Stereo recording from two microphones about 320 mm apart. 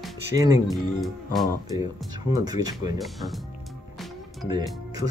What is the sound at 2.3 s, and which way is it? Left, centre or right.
Speech, centre.